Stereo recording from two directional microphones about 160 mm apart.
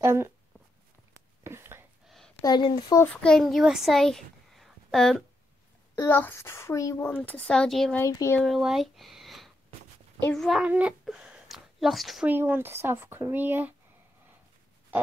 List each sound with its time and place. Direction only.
0.0 s speech: 15° right (ahead or behind)
1.1 s a sound: 15° right (ahead or behind)
2.0 s a sound: centre (ahead or behind)
2.4 s speech: 30° left (ahead or behind)
3.0 s a child's voice: 5° left (ahead or behind)
5.9 s a child's voice: 15° left (ahead or behind)
8.0 s speech: 20° left (ahead or behind)
8.4 s speech: centre (ahead or behind)
10.6 s speech: 10° right (ahead or behind)
12.3 s speech: 15° right (ahead or behind)